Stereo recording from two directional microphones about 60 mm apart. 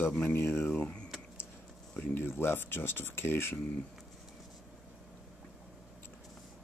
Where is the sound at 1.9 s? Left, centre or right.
Left.